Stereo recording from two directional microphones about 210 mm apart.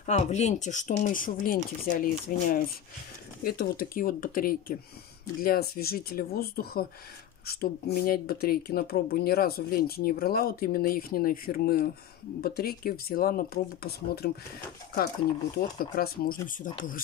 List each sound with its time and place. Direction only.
0.0 s speech: 35° left (ahead or behind); by 14.3 s 50° left (ahead or behind)
15.5 s speech: 45° left (ahead or behind)